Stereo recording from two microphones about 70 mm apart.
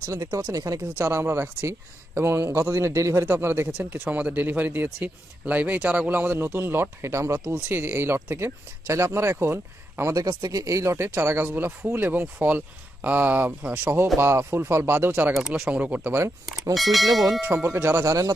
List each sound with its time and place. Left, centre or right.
0.1 s a man's voice: right
0.9 s a man's voice: right
3.3 s a man's voice: right
10.1 s speech: right
14.1 s a man's voice: right
15.7 s speech: right
16.7 s speech: centre
17.4 s speech: right
17.6 s a man's voice: right
18.0 s speech: right